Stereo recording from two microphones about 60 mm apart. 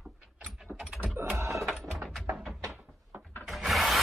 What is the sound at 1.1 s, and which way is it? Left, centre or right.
Typing, right.